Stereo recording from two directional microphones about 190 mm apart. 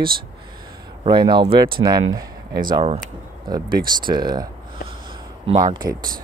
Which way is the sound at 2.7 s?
30° right (ahead or behind).